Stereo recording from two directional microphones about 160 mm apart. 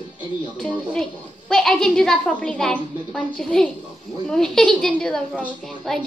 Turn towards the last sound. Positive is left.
turn(degrees=5)  # may be behind; listen again after turning